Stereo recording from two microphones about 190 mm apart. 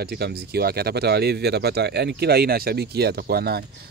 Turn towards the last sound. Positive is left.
turn(degrees=-55)  # may be behind; listen again after turning